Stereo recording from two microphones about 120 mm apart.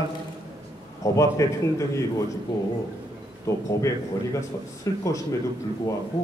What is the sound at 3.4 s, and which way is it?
A man's voice, 25° left (ahead or behind).